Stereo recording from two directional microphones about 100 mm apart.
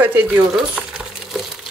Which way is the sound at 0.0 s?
20° right (ahead or behind).